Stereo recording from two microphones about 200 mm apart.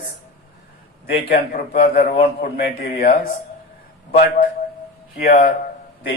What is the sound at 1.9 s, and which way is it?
A man's voice, 50° left (ahead or behind).